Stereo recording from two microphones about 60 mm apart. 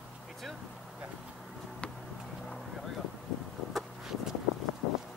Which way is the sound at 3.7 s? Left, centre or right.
Centre.